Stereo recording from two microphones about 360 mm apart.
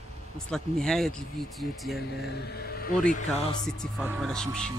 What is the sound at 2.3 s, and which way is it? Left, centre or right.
Speech, left.